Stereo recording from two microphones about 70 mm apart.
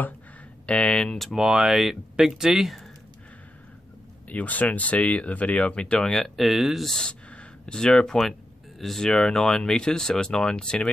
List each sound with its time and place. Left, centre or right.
0.7 s speech: centre
1.2 s speech: centre
4.3 s speech: left; by 6.9 s centre
6.9 s speech: centre